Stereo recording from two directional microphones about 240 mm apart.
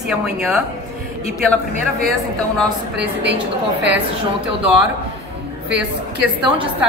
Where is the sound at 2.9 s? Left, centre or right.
Right.